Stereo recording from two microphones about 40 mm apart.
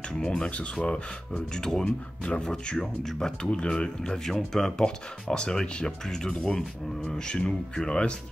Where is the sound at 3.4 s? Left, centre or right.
Left.